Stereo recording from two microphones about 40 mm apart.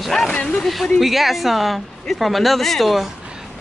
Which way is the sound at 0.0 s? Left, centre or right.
Centre.